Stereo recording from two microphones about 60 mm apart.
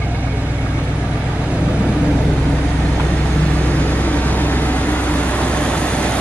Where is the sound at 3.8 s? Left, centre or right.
Left.